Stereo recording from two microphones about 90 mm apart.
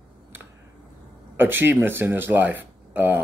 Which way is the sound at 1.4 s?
20° right (ahead or behind).